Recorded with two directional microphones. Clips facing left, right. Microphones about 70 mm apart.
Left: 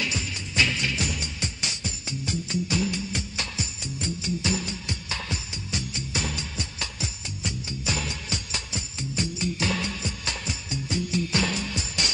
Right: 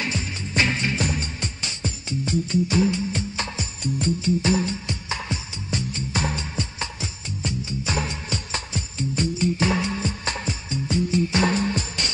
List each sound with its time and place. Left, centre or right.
0.0 s music: right